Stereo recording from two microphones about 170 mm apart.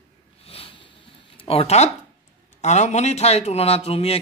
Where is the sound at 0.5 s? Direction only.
35° left (ahead or behind).